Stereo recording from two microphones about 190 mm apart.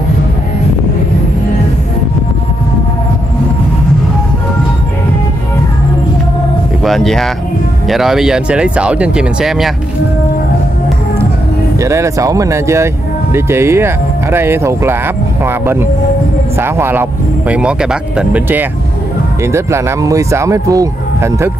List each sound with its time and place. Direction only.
6.8 s music: centre (ahead or behind)
7.9 s speech: centre (ahead or behind)
11.8 s speech: 15° right (ahead or behind)